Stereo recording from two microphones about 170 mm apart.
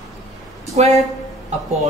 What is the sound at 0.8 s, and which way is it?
Speech, 45° right (ahead or behind).